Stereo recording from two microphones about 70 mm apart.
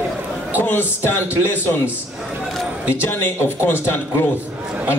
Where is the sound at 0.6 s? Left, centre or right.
Left.